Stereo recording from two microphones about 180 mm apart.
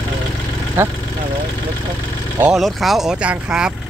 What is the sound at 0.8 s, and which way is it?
Speech, 15° right (ahead or behind).